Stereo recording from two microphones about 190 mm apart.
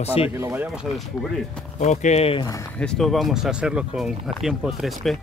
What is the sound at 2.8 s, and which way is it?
Speech, 5° left (ahead or behind).